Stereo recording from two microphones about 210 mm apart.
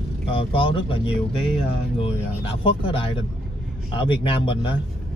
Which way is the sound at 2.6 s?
25° left (ahead or behind).